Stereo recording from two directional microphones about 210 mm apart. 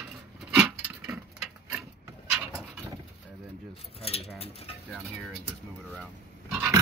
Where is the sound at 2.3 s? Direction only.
5° right (ahead or behind).